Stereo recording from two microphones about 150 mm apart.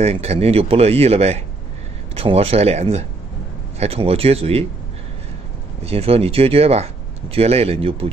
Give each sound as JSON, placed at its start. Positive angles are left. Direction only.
{"t": 0.0, "sound": "speech", "side_deg": -45}
{"t": 5.9, "sound": "speech", "side_deg": -40}